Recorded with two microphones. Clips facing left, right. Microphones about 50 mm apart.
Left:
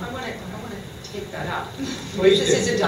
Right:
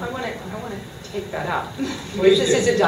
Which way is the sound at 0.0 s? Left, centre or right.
Centre.